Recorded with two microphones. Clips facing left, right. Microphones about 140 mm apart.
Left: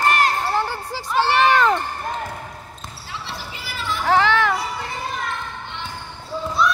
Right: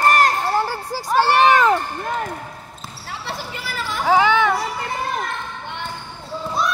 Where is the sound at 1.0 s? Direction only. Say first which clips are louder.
Right 3 dB; 45° right (ahead or behind).